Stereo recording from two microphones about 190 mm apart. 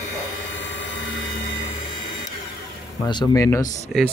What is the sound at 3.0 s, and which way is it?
Speech, 20° left (ahead or behind).